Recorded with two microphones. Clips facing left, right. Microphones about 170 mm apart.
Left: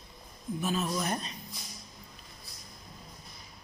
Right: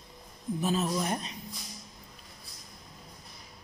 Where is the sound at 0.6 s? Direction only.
35° right (ahead or behind).